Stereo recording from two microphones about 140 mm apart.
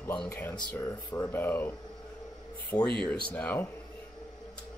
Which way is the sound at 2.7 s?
30° left (ahead or behind).